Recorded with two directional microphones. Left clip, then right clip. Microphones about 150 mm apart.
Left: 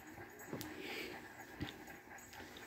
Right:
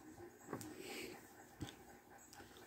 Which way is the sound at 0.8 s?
5° right (ahead or behind).